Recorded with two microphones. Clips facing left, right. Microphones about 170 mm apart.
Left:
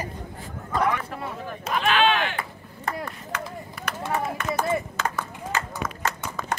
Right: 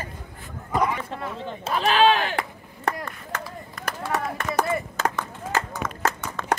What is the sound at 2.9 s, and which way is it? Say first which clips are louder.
Chop: right 3 dB; 70° right (ahead or behind).